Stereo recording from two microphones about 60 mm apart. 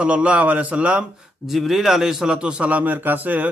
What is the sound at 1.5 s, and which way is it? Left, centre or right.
A man's voice, centre.